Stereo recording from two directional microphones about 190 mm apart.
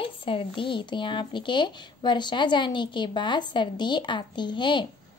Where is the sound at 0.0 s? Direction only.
30° left (ahead or behind).